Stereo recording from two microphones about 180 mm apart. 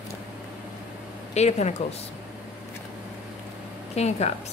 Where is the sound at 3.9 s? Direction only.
35° left (ahead or behind).